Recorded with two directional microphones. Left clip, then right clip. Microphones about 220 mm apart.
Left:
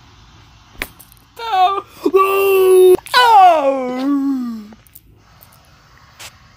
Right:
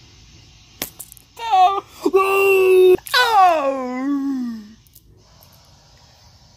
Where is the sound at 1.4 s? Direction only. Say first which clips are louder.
Even; 15° left (ahead or behind).